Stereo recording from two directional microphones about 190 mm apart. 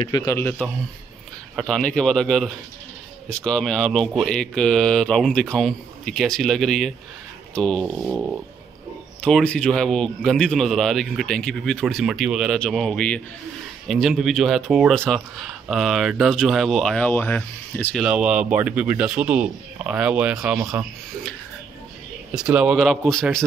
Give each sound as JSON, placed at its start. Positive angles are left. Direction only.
{"t": 0.0, "sound": "a man's voice", "side_deg": 20}
{"t": 22.3, "sound": "speech", "side_deg": -5}